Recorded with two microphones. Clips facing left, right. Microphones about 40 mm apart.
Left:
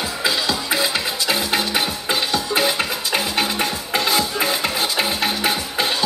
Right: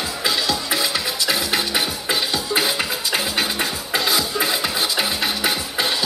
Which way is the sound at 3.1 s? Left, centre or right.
Left.